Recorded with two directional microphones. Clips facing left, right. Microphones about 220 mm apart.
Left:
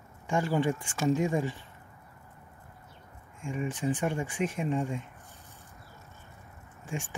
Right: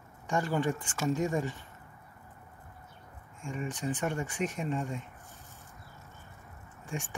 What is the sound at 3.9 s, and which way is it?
Speech, 10° left (ahead or behind).